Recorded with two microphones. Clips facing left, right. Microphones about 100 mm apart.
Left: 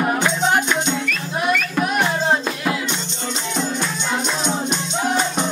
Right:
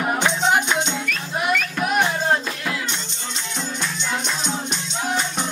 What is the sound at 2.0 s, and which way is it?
Music, 15° left (ahead or behind).